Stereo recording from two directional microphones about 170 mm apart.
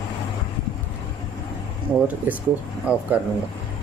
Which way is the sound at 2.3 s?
10° right (ahead or behind).